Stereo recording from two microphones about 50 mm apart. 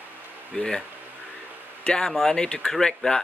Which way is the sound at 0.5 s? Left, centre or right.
Left.